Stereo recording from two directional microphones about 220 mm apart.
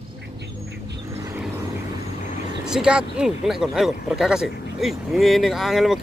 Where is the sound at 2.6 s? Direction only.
5° right (ahead or behind).